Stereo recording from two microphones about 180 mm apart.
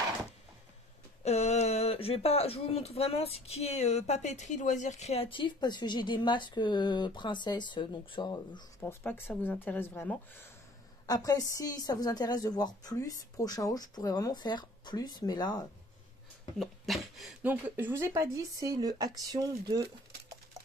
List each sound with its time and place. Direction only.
1.2 s speech: 35° left (ahead or behind)
16.5 s speech: centre (ahead or behind); by 19.9 s 20° right (ahead or behind)